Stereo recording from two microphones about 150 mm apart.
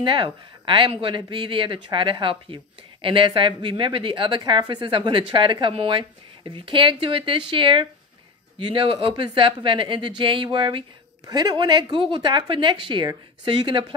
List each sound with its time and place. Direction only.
0.0 s speech: 35° right (ahead or behind)